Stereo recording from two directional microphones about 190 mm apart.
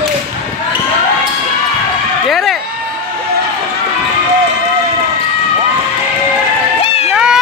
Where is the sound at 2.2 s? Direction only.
Centre (ahead or behind).